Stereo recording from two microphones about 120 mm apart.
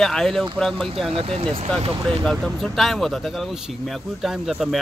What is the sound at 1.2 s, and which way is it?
Speech, 55° right (ahead or behind).